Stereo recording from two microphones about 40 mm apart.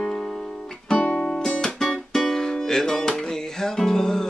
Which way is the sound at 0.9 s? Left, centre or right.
Left.